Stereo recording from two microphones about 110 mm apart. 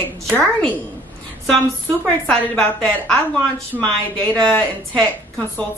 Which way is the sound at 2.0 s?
5° left (ahead or behind).